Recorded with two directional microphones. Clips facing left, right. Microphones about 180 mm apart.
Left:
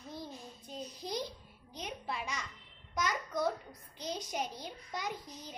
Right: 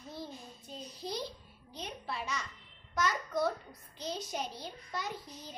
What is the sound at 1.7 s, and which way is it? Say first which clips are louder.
Speech: left 1 dB; 15° left (ahead or behind).